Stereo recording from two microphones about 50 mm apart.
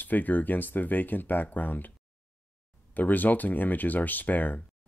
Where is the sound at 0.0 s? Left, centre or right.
Left.